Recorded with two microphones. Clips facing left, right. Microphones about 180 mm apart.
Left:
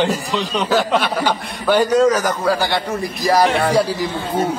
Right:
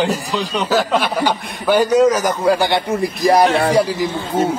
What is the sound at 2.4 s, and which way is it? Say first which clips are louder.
A man's voice: right 3 dB; 25° right (ahead or behind).